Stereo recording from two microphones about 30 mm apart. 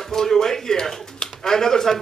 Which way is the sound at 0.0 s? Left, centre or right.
Centre.